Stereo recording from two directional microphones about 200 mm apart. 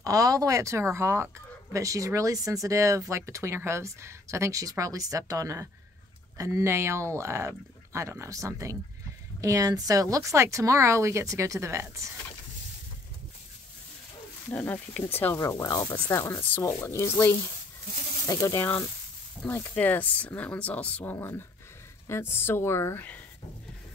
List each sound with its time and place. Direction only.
0.0 s speech: 15° right (ahead or behind)
14.5 s speech: 10° left (ahead or behind)